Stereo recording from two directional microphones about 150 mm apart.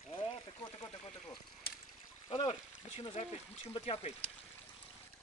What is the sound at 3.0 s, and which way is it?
Speech, 45° left (ahead or behind).